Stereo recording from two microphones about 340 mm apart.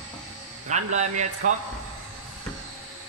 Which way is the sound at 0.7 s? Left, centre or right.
Right.